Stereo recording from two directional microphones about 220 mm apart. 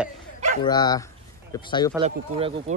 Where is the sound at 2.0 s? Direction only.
25° right (ahead or behind).